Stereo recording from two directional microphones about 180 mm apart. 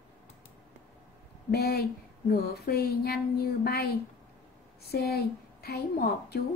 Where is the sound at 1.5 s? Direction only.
60° left (ahead or behind).